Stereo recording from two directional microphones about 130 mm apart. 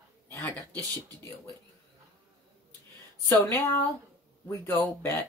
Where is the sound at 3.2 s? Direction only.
15° left (ahead or behind).